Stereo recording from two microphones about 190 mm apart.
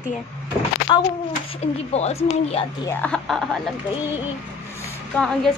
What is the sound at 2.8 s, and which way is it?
Speech, 5° left (ahead or behind).